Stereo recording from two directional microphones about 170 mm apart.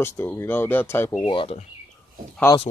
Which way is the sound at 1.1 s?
30° left (ahead or behind).